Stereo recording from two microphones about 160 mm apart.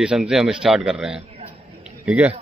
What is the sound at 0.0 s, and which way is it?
A man's voice, 5° right (ahead or behind).